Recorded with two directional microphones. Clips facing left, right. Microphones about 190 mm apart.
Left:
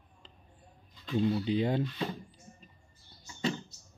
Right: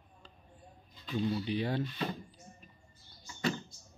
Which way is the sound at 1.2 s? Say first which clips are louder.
Left 4 dB; 20° left (ahead or behind).